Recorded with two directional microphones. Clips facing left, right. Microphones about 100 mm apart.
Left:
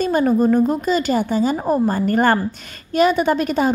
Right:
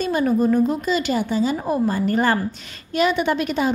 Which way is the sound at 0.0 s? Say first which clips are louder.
Left 3 dB; 45° left (ahead or behind).